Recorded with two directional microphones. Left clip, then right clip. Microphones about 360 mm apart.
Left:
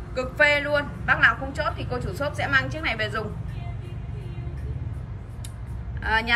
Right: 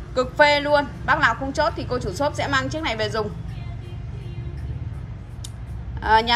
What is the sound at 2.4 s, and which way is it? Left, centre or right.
Speech, left.